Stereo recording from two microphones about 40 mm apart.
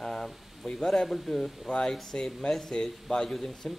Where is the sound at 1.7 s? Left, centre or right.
Left.